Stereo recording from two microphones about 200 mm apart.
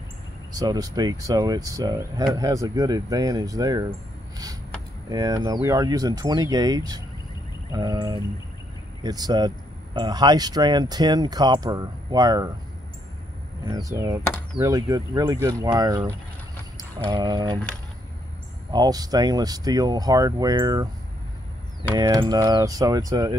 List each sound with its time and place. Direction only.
0.5 s speech: 20° right (ahead or behind)
5.1 s speech: 15° right (ahead or behind)
13.7 s speech: 15° right (ahead or behind)
17.1 s speech: 20° right (ahead or behind)
18.7 s speech: 20° right (ahead or behind)
21.9 s speech: 20° right (ahead or behind)